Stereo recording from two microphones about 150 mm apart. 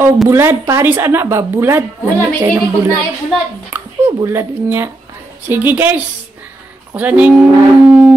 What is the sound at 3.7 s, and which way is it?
Speech, 15° right (ahead or behind).